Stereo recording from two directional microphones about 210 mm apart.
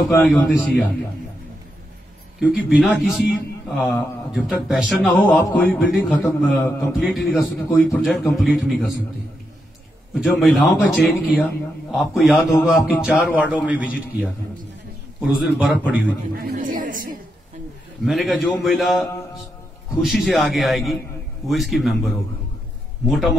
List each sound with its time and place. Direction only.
0.1 s a man's voice: centre (ahead or behind)
2.4 s a man's voice: centre (ahead or behind)
10.1 s a man's voice: centre (ahead or behind)
16.3 s a man's voice: 45° right (ahead or behind)
18.0 s a man's voice: centre (ahead or behind)